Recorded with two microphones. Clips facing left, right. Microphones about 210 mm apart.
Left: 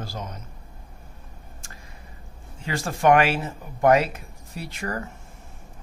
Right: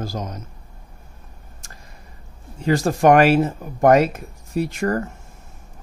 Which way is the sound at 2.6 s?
40° right (ahead or behind).